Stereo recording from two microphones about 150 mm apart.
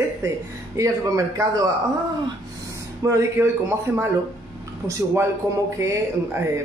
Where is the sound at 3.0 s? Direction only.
20° right (ahead or behind).